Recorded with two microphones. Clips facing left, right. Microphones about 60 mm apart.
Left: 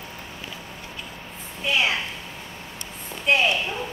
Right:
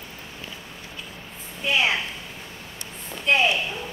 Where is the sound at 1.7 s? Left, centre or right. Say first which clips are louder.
Right 1 dB; centre.